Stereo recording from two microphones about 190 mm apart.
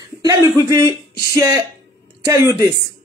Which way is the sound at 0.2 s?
20° right (ahead or behind).